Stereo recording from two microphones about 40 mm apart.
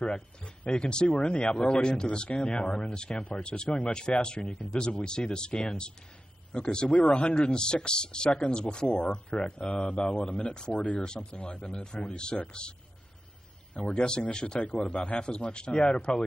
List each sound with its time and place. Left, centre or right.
0.0 s speech: left
11.1 s speech: centre
13.8 s speech: left